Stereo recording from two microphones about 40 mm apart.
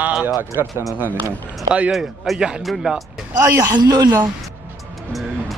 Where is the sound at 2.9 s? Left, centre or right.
Right.